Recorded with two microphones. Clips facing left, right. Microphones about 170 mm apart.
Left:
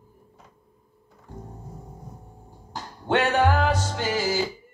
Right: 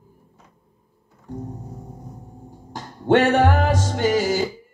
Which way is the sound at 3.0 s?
50° right (ahead or behind).